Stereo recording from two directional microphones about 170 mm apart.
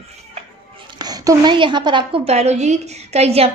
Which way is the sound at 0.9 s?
25° right (ahead or behind).